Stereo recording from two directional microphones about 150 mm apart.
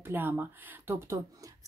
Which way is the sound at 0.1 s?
15° right (ahead or behind).